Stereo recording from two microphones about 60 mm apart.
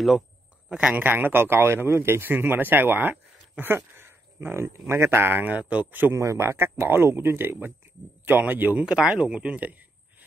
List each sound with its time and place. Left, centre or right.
0.7 s speech: centre
0.9 s speech: right
6.1 s speech: right
8.8 s speech: centre